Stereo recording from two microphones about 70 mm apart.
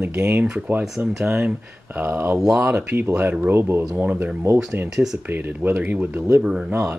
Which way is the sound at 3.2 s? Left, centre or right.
Right.